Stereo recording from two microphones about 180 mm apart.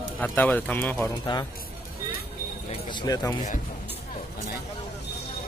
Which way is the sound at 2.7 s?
25° left (ahead or behind).